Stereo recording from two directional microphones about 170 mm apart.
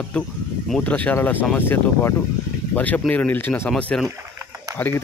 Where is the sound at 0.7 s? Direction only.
5° left (ahead or behind).